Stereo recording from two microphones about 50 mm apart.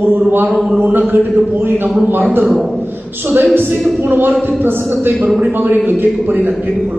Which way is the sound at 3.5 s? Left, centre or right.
Right.